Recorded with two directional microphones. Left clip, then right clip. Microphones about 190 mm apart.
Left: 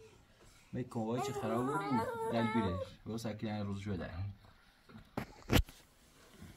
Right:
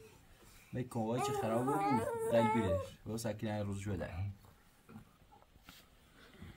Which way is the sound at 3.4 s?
5° left (ahead or behind).